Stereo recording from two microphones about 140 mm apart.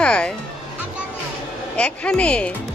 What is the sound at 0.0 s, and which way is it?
Music, 5° left (ahead or behind).